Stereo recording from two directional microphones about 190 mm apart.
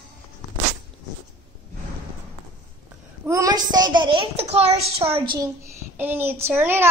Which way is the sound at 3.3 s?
20° right (ahead or behind).